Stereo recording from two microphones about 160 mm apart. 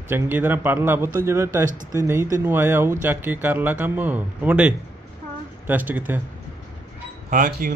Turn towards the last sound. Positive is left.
turn(degrees=-55)  # may be behind; listen again after turning